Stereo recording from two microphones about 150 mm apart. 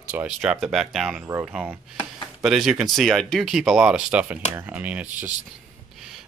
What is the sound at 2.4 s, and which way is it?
Speech, centre (ahead or behind).